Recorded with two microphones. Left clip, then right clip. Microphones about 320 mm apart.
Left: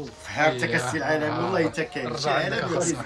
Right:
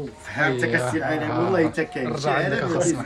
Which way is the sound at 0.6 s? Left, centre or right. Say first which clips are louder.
Right 2 dB; centre.